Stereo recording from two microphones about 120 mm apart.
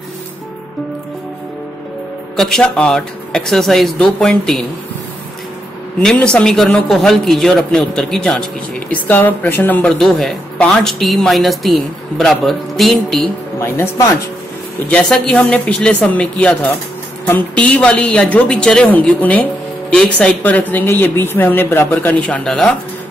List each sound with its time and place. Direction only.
2.3 s a man's voice: 5° left (ahead or behind)
5.9 s a man's voice: 5° left (ahead or behind)
13.6 s speech: 20° left (ahead or behind)
14.9 s a woman's voice: 10° left (ahead or behind)